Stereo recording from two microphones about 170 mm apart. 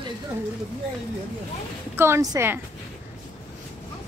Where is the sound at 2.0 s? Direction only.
15° right (ahead or behind).